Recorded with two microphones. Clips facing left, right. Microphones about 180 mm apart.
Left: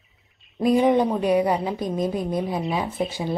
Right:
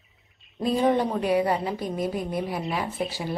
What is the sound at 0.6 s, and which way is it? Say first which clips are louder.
A woman's voice: left 4 dB; 10° left (ahead or behind).